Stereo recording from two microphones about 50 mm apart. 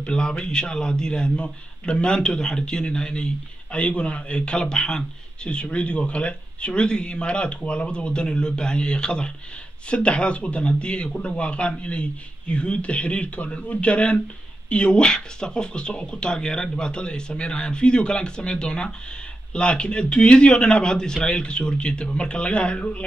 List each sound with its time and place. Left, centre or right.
0.0 s a man's voice: centre